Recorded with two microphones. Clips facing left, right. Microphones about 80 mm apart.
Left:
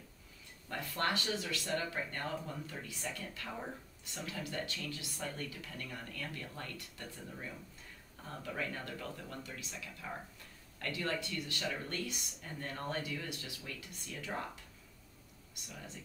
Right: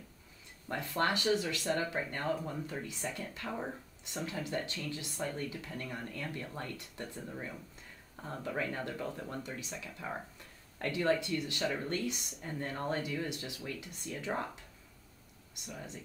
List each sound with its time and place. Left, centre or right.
0.7 s speech: right
15.6 s speech: right